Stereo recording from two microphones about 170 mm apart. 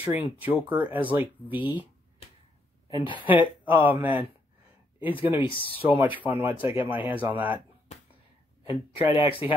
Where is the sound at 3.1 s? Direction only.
10° right (ahead or behind).